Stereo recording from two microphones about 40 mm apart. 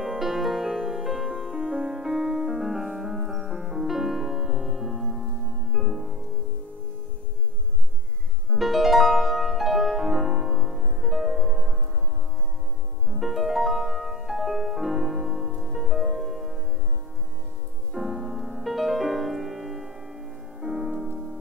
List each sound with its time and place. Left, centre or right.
0.0 s music: centre
1.6 s music: centre
8.5 s music: centre
13.1 s music: centre
17.9 s music: centre